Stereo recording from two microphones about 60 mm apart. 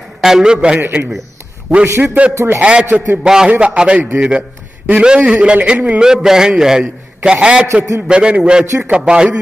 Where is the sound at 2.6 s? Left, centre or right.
Centre.